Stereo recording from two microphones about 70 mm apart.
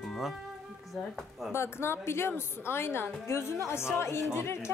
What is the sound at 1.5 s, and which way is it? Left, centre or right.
A woman's voice, left.